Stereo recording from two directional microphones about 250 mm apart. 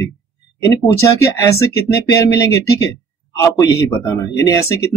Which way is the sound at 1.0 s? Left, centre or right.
Centre.